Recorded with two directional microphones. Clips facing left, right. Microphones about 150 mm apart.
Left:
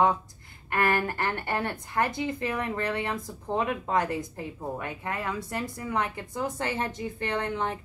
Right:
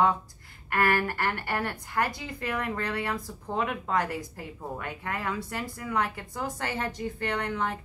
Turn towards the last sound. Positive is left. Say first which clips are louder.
# left 1 dB
turn(degrees=25)  # may be behind; listen again after turning